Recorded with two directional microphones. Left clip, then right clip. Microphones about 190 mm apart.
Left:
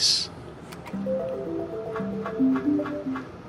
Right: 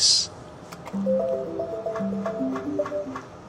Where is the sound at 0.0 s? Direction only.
15° right (ahead or behind).